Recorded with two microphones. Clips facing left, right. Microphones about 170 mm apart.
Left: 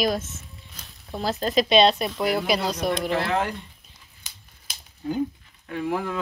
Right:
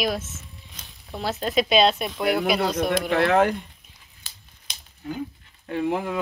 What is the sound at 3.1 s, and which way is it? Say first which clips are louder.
Speech: right 5 dB; 60° right (ahead or behind).